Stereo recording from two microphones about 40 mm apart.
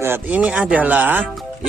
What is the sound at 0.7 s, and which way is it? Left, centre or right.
Music, right.